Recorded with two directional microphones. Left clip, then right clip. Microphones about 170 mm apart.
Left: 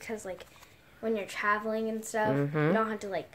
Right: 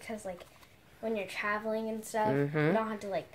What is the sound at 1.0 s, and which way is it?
A woman's voice, 25° left (ahead or behind).